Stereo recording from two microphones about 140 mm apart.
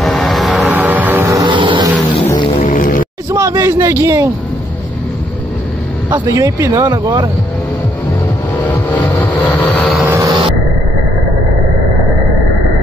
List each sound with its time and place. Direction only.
0.0 s vehicle: centre (ahead or behind); by 1.4 s 15° right (ahead or behind)
1.4 s a sound: 35° right (ahead or behind)
2.3 s music: 35° left (ahead or behind)
2.6 s music: 80° left
3.3 s speech: 20° right (ahead or behind)
6.0 s speech: 35° right (ahead or behind)
6.7 s speech: 20° right (ahead or behind)
8.6 s vehicle: 10° left (ahead or behind)
10.0 s vehicle: 20° right (ahead or behind)